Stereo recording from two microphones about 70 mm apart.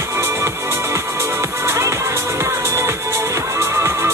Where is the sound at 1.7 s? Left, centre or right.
Right.